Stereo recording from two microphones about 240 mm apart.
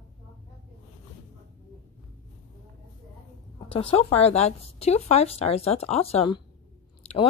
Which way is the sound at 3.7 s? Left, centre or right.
Left.